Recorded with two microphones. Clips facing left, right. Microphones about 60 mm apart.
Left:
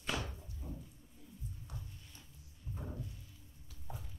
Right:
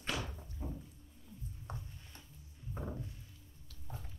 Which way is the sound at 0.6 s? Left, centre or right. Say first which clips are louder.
Right 4 dB; right.